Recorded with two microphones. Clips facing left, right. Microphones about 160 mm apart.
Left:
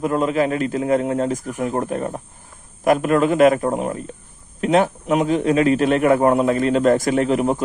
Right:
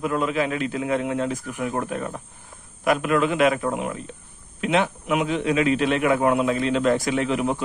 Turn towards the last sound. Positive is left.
turn(degrees=40)  # may be behind; listen again after turning